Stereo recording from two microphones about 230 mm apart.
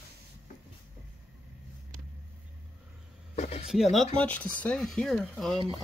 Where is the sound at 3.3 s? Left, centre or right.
Left.